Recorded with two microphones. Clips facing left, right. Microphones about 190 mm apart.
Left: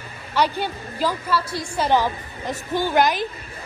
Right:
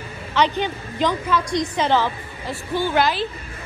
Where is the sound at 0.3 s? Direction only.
10° left (ahead or behind).